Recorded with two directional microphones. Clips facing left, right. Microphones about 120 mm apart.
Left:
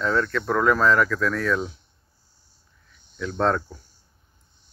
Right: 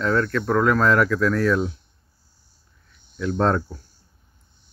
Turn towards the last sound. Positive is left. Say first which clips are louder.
# right 2 dB
turn(degrees=-5)  # may be behind; listen again after turning